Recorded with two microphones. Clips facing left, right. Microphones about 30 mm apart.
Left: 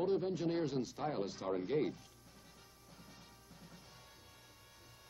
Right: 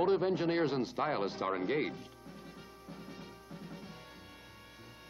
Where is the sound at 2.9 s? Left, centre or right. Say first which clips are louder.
Right 11 dB; right.